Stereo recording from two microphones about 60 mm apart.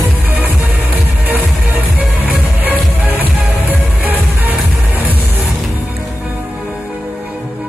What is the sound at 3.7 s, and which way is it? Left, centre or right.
Music, right.